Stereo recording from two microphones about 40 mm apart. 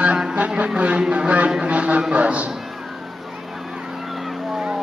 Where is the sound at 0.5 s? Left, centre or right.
Right.